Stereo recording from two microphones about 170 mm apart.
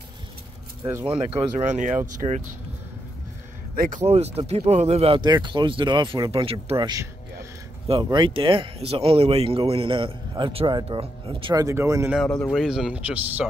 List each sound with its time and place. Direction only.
1.0 s speech: 30° right (ahead or behind)
2.1 s speech: 45° right (ahead or behind)
3.7 s speech: 60° right (ahead or behind)
4.0 s speech: 40° right (ahead or behind)
7.9 s speech: 25° right (ahead or behind)
11.5 s speech: 15° right (ahead or behind)
12.2 s speech: centre (ahead or behind)